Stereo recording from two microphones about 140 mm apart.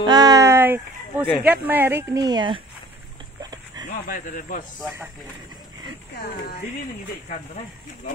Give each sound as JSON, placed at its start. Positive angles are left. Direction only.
{"t": 0.0, "sound": "a sound", "side_deg": -30}
{"t": 1.4, "sound": "a woman's voice", "side_deg": -10}
{"t": 3.8, "sound": "speech", "side_deg": 75}